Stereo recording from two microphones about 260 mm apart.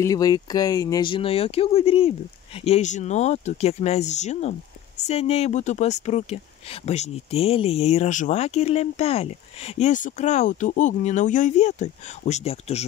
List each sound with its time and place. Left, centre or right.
0.0 s speech: centre